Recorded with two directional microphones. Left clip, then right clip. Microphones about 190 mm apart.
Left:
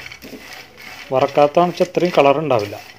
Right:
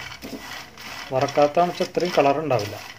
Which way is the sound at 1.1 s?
40° left (ahead or behind).